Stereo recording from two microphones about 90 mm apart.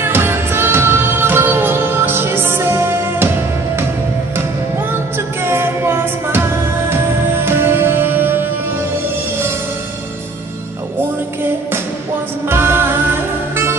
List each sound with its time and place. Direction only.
0.0 s music: 25° right (ahead or behind)
5.4 s music: 25° right (ahead or behind)
12.4 s music: 25° right (ahead or behind)